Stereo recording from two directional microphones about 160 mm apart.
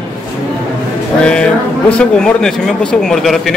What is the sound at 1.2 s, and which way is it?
Speech, 5° left (ahead or behind).